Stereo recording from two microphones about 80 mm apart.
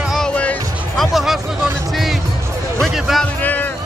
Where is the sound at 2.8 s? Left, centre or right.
Centre.